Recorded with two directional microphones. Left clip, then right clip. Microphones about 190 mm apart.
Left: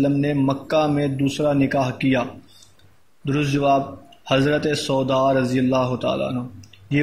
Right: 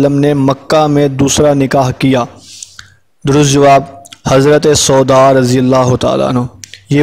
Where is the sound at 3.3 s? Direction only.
55° right (ahead or behind).